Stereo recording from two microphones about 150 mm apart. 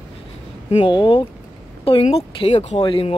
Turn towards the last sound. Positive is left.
turn(degrees=35)  # may be behind; listen again after turning